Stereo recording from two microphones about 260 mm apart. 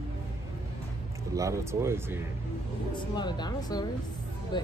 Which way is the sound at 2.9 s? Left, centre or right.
Centre.